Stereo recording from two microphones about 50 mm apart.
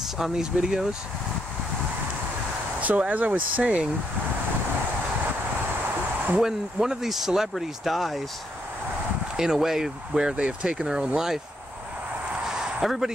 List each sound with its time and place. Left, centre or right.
0.2 s speech: centre
2.8 s speech: right
6.4 s speech: centre
9.4 s speech: centre
12.4 s a sound: centre